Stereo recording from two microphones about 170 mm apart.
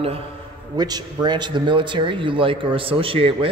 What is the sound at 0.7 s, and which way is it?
A man's voice, 25° right (ahead or behind).